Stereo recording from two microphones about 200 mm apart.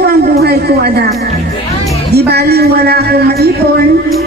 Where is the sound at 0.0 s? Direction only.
55° right (ahead or behind).